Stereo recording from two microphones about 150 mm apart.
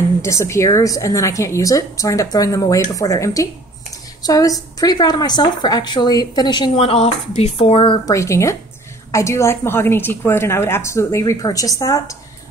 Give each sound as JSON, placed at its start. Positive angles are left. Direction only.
{"t": 0.2, "sound": "a woman's voice", "side_deg": 20}
{"t": 8.1, "sound": "a woman's voice", "side_deg": 20}